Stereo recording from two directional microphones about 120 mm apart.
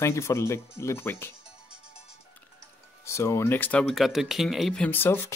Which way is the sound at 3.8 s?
Centre (ahead or behind).